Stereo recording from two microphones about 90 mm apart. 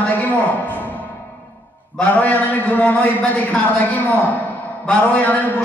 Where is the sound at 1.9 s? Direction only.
15° left (ahead or behind).